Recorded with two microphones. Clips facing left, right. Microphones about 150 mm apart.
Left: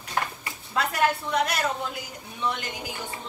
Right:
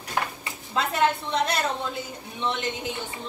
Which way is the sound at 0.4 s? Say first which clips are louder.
Even; 25° right (ahead or behind).